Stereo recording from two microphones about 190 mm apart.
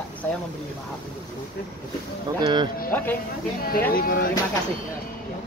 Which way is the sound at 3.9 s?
50° left (ahead or behind).